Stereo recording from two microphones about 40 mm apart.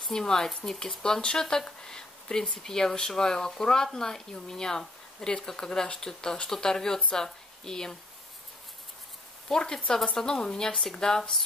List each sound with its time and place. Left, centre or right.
0.1 s a woman's voice: centre
9.5 s speech: centre